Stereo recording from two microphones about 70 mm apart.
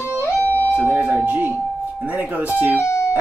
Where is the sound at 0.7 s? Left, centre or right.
Right.